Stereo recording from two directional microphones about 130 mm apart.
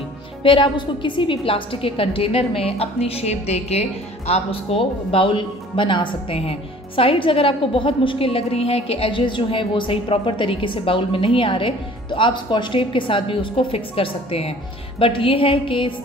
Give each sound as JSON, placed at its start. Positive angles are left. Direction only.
{"t": 0.4, "sound": "a woman's voice", "side_deg": 40}